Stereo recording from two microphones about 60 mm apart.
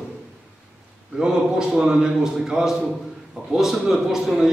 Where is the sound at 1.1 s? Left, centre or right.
Centre.